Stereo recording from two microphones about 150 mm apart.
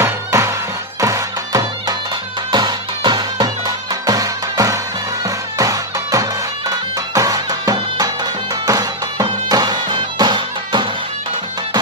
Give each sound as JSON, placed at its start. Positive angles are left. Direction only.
{"t": 0.0, "sound": "music", "side_deg": -20}